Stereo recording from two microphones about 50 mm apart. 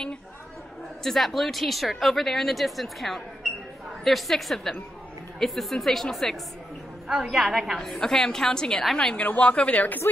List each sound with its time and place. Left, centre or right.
1.0 s speech: centre
7.1 s a woman's voice: centre
7.8 s a woman's voice: centre
9.2 s speech: left